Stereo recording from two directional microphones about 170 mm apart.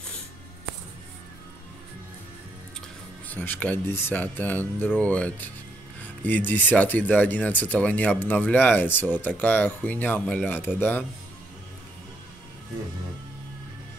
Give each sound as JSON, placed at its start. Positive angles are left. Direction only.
{"t": 3.3, "sound": "speech", "side_deg": 10}